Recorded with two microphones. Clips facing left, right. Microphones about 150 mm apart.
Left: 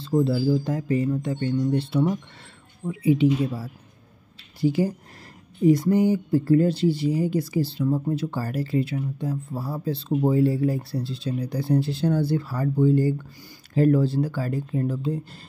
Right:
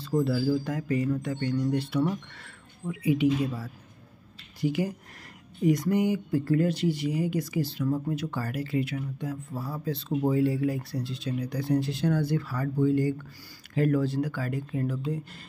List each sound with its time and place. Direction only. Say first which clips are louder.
0.0 s speech: left 4 dB; 25° left (ahead or behind)